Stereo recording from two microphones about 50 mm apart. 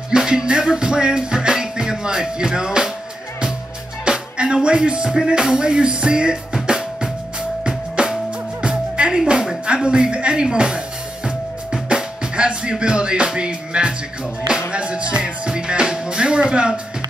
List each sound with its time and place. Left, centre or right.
0.1 s music: centre
4.0 s music: centre
9.3 s a sound: centre
9.8 s music: centre